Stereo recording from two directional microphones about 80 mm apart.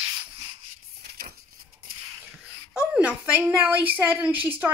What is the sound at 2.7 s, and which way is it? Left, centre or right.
Speech, centre.